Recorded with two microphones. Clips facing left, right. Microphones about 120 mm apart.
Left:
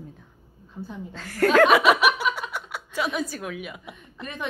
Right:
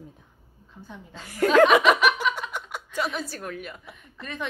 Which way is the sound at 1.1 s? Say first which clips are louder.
Left 1 dB; centre (ahead or behind).